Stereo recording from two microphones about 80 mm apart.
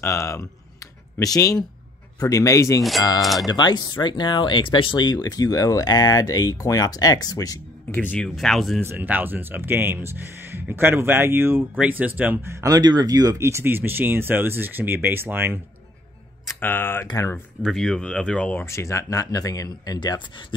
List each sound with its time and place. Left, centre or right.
0.0 s speech: left
3.2 s speech: centre
3.4 s speech: left
7.9 s speech: left
8.2 s speech: centre
8.8 s speech: right
12.6 s speech: right
13.4 s speech: right
16.5 s speech: left
17.6 s speech: centre
18.6 s speech: left